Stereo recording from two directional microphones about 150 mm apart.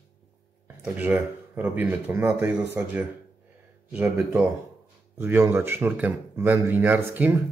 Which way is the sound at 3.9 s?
5° right (ahead or behind).